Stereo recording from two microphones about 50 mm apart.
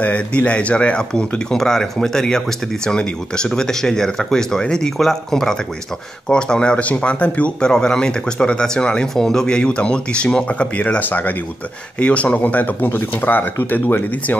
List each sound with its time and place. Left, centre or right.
0.0 s speech: left
1.6 s speech: centre; by 7.5 s left
7.6 s speech: centre
10.8 s speech: left
12.0 s speech: left